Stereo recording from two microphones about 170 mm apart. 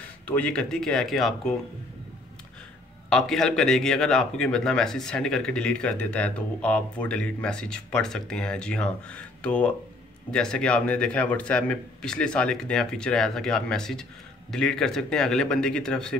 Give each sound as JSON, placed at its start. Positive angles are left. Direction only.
{"t": 0.3, "sound": "speech", "side_deg": 5}
{"t": 3.1, "sound": "speech", "side_deg": 5}